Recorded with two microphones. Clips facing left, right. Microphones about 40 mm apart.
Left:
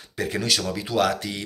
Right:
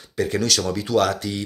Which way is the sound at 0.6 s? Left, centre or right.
Centre.